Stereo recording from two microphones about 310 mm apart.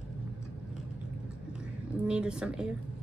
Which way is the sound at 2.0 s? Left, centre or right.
Centre.